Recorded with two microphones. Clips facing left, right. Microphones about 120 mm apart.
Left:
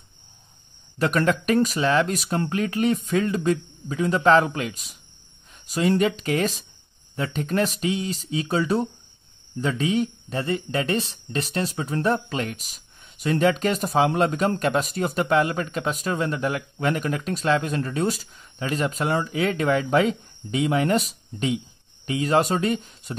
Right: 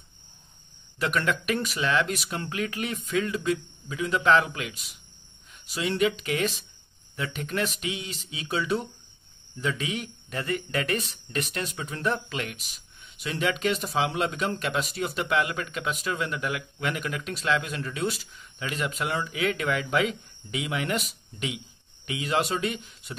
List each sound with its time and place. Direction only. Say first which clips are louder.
0.9 s speech: left 5 dB; 40° left (ahead or behind)